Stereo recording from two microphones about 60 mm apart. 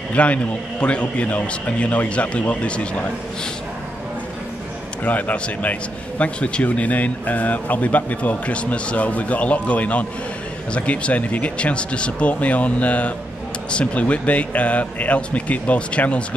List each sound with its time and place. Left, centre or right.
0.1 s a man's voice: left
5.0 s a man's voice: left